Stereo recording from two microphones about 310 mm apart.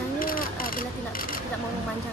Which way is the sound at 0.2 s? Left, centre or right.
Left.